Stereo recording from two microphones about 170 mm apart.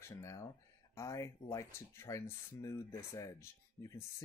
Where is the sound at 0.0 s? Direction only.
20° left (ahead or behind).